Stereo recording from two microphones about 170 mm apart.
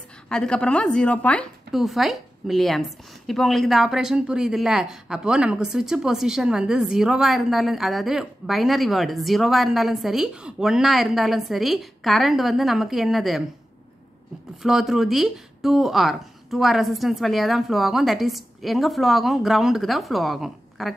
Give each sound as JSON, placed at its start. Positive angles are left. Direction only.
{"t": 0.3, "sound": "speech", "side_deg": 5}
{"t": 14.6, "sound": "speech", "side_deg": 0}